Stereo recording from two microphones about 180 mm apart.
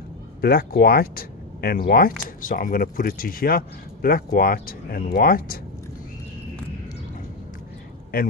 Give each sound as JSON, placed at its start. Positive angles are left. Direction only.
{"t": 0.4, "sound": "speech", "side_deg": 55}